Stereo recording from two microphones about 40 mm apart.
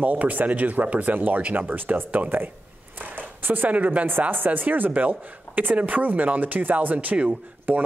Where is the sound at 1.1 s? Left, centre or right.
Right.